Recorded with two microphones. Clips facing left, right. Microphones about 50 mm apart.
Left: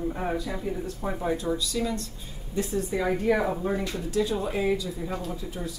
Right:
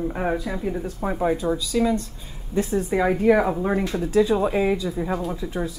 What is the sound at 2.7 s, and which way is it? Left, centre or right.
Speech, right.